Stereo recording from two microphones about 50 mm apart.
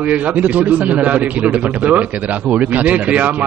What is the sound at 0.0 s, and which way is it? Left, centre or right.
A man's voice, right.